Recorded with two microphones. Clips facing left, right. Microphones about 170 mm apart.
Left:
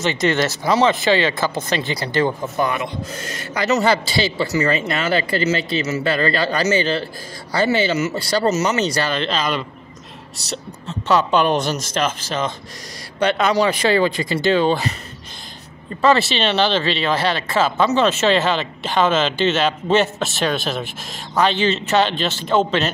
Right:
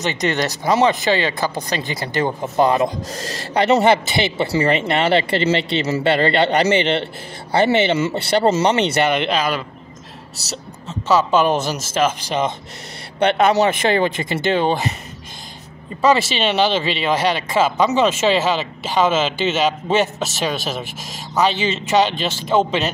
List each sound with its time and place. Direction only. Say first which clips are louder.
0.2 s speech: left 2 dB; 15° right (ahead or behind)
16.0 s speech: even; 10° right (ahead or behind)